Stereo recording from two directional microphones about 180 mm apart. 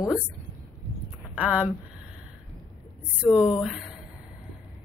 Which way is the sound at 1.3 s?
10° right (ahead or behind).